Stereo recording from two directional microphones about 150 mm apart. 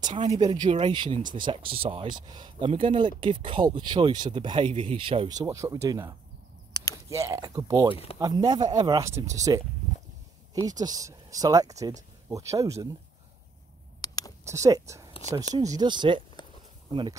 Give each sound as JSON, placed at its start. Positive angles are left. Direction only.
{"t": 0.3, "sound": "speech", "side_deg": -45}
{"t": 0.6, "sound": "speech", "side_deg": -35}
{"t": 5.3, "sound": "speech", "side_deg": -25}
{"t": 6.7, "sound": "a sound", "side_deg": 25}
{"t": 7.1, "sound": "speech", "side_deg": -20}
{"t": 7.9, "sound": "speech", "side_deg": 40}
{"t": 8.2, "sound": "speech", "side_deg": -25}
{"t": 14.0, "sound": "a sound", "side_deg": 25}
{"t": 14.4, "sound": "speech", "side_deg": -20}
{"t": 16.4, "sound": "a sound", "side_deg": 30}